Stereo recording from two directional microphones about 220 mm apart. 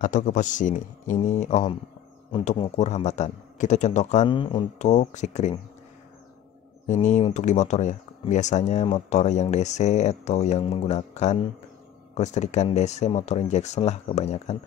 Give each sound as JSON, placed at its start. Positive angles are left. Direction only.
{"t": 0.0, "sound": "speech", "side_deg": 35}
{"t": 2.3, "sound": "speech", "side_deg": 20}
{"t": 6.9, "sound": "speech", "side_deg": 30}